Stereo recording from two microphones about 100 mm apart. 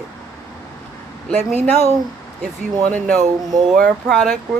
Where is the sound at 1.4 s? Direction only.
90° right.